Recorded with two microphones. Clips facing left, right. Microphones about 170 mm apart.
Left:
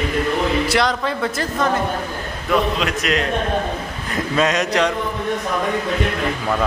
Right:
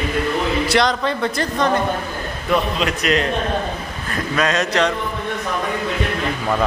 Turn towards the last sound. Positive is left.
turn(degrees=15)  # may be behind; listen again after turning